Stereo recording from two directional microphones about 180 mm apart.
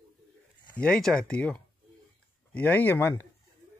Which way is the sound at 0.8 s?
5° left (ahead or behind).